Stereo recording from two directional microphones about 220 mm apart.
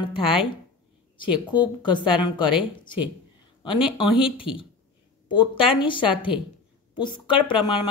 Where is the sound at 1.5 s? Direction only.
20° left (ahead or behind).